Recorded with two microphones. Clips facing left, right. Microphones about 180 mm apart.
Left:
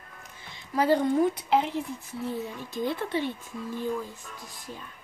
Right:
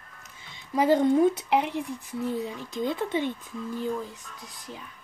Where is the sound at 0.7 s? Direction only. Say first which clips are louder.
Right 2 dB; 20° right (ahead or behind).